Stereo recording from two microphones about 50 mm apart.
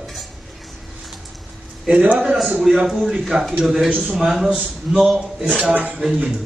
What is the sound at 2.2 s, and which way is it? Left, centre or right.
Speech, centre.